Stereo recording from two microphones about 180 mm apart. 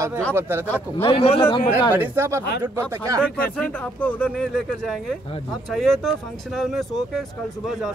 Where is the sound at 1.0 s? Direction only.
30° left (ahead or behind).